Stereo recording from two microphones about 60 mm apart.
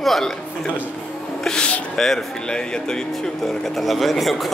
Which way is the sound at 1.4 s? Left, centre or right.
Centre.